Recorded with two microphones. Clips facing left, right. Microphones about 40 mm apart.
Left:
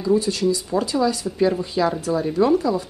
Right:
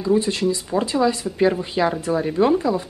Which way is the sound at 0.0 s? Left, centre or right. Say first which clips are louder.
Even; right.